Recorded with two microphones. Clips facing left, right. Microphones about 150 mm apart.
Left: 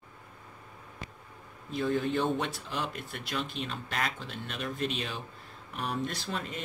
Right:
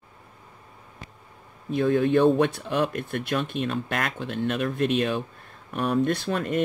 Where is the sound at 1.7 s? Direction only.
60° right (ahead or behind).